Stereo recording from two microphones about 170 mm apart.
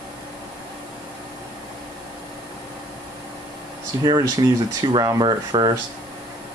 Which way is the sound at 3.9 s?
20° right (ahead or behind).